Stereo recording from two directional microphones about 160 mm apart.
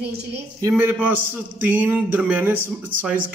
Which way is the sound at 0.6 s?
10° right (ahead or behind).